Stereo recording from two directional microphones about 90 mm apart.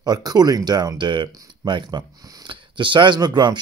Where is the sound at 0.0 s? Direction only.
45° right (ahead or behind).